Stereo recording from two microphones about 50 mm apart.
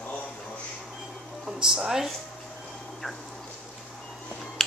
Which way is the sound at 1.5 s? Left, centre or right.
Centre.